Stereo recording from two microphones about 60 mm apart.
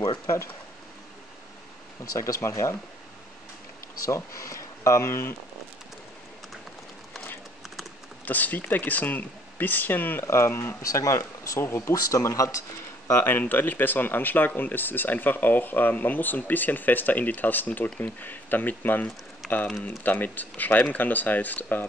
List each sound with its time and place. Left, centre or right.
0.0 s speech: left
2.1 s speech: left
4.0 s speech: left
8.3 s speech: left
10.2 s speech: left
10.5 s speech: left
10.8 s speech: left
11.6 s speech: left
11.9 s speech: left
13.2 s speech: left